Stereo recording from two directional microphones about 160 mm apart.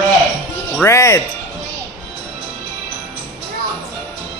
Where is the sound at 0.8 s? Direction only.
20° left (ahead or behind).